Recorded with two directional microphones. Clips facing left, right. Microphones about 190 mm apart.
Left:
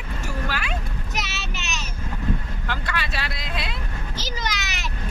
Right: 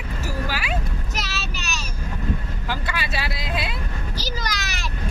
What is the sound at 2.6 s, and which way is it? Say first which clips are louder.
Vehicle: right 1 dB; 5° right (ahead or behind).